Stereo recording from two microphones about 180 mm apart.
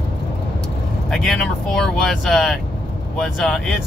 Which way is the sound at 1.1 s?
Centre (ahead or behind).